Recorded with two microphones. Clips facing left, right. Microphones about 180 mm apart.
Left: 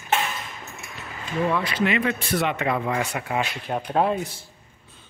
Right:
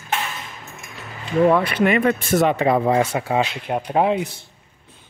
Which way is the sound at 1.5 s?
55° right (ahead or behind).